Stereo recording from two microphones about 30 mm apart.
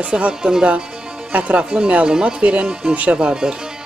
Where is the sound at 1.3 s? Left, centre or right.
Right.